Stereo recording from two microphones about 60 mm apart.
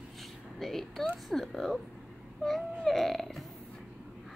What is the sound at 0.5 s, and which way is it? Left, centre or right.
A woman's voice, centre.